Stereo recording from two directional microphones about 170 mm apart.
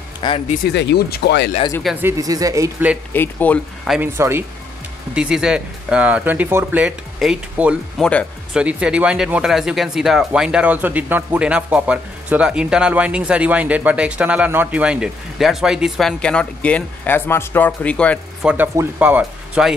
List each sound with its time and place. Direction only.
0.2 s speech: 30° left (ahead or behind)
0.7 s speech: 80° left
2.0 s speech: 15° right (ahead or behind)
3.1 s speech: 10° left (ahead or behind)
3.8 s speech: centre (ahead or behind)
4.2 s speech: 15° right (ahead or behind)
8.0 s speech: 5° left (ahead or behind)
8.5 s speech: 5° right (ahead or behind)
18.4 s speech: 10° right (ahead or behind)